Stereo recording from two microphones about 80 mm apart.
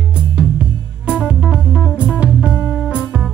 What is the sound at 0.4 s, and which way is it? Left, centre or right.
Music, centre.